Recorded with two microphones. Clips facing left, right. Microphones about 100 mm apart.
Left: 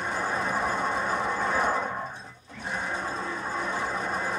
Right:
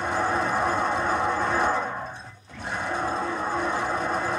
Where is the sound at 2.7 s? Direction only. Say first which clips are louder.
Right 4 dB; 65° right (ahead or behind).